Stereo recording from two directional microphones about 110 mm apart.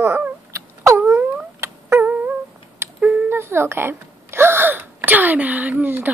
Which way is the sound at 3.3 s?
20° right (ahead or behind).